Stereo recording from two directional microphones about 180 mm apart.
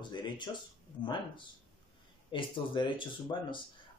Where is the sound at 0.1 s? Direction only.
25° left (ahead or behind).